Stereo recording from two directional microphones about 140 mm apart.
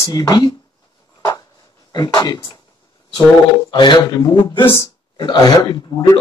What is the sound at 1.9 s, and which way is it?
Speech, 30° left (ahead or behind).